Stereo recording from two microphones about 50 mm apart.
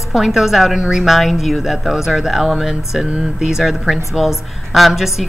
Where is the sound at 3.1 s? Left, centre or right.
Centre.